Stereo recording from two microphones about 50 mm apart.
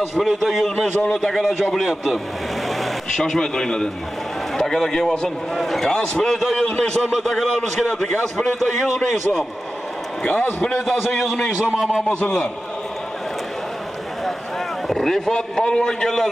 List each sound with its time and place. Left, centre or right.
0.1 s a man's voice: centre
3.1 s a man's voice: centre
10.2 s a man's voice: left
10.9 s a man's voice: centre
11.5 s a man's voice: centre
12.2 s a man's voice: centre
14.9 s a man's voice: centre